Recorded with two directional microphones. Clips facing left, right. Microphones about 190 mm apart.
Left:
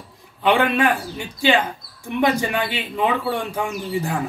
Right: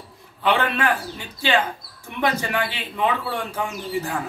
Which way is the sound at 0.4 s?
15° left (ahead or behind).